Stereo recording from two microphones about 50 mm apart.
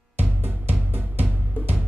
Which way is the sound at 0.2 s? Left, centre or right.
Right.